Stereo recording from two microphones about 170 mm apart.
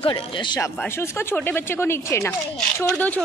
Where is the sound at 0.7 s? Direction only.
10° left (ahead or behind).